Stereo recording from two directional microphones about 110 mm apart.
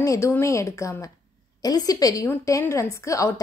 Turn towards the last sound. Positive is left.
turn(degrees=30)  # may be behind; listen again after turning